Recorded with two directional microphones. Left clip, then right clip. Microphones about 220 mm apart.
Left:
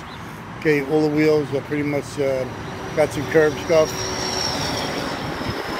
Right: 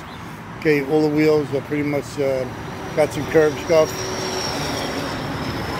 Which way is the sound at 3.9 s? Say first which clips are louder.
Even; 40° right (ahead or behind).